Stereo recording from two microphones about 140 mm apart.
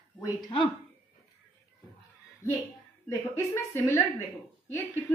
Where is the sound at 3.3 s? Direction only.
15° left (ahead or behind).